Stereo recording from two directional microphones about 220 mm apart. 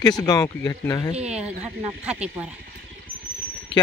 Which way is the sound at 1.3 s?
5° right (ahead or behind).